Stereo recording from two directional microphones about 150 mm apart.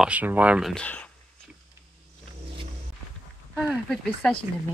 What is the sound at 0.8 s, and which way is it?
Speech, 10° left (ahead or behind).